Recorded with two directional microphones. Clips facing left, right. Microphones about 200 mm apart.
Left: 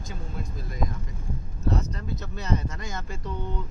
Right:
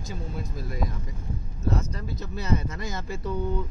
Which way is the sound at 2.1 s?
5° right (ahead or behind).